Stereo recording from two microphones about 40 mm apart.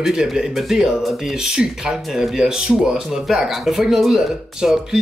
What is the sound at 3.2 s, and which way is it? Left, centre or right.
Speech, centre.